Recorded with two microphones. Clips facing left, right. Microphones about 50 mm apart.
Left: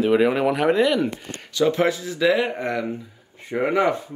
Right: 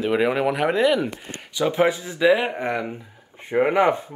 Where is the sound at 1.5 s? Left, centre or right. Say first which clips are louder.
Even; centre.